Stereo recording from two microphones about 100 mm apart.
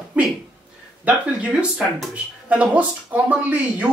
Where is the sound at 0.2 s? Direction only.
15° right (ahead or behind).